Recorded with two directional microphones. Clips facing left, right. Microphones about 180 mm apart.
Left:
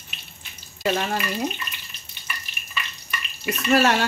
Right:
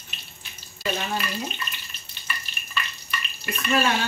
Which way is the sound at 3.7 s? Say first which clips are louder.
Left 4 dB; 75° left (ahead or behind).